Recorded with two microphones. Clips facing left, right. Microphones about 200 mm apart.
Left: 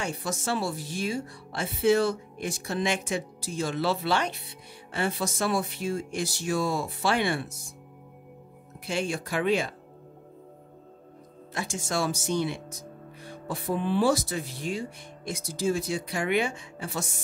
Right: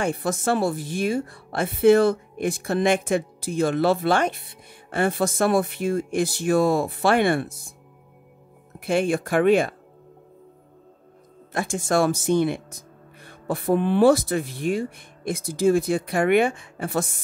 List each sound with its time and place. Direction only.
0.0 s a woman's voice: 55° right (ahead or behind)
8.7 s a woman's voice: 55° right (ahead or behind)
11.5 s a woman's voice: 55° right (ahead or behind)